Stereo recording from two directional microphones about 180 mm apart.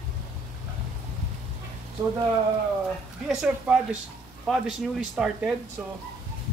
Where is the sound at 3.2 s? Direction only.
5° right (ahead or behind).